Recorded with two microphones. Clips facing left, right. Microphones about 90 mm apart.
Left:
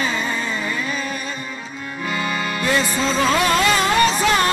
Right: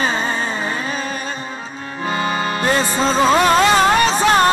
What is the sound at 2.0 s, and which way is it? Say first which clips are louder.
Music: right 4 dB; 35° right (ahead or behind).